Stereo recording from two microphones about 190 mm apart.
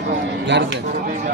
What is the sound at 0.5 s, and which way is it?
Speech, 70° right (ahead or behind).